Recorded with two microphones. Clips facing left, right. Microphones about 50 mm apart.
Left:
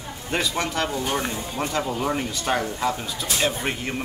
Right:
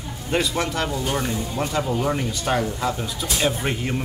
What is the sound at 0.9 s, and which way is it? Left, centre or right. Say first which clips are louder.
Speech: right 1 dB; left.